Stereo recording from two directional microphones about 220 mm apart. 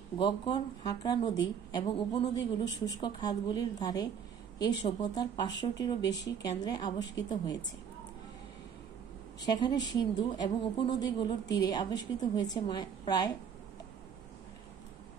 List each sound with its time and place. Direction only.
0.2 s a woman's voice: 20° left (ahead or behind)
5.9 s speech: 50° left (ahead or behind)
6.6 s a woman's voice: 20° left (ahead or behind)
9.4 s a woman's voice: 20° left (ahead or behind)